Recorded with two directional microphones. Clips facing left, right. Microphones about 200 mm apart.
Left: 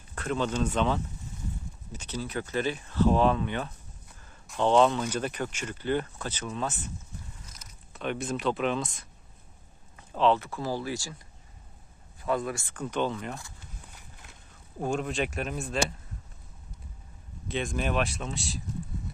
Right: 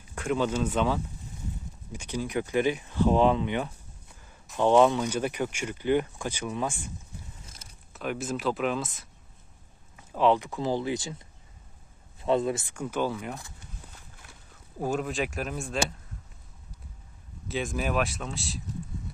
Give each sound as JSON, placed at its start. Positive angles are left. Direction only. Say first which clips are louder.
{"t": 0.1, "sound": "speech", "louder": "right 2 dB", "side_deg": -10}
{"t": 7.4, "sound": "a sound", "louder": "right 1 dB", "side_deg": -30}
{"t": 7.9, "sound": "speech", "louder": "even", "side_deg": -5}
{"t": 12.2, "sound": "speech", "louder": "right 4 dB", "side_deg": -25}
{"t": 14.8, "sound": "speech", "louder": "even", "side_deg": -5}
{"t": 17.5, "sound": "speech", "louder": "even", "side_deg": -5}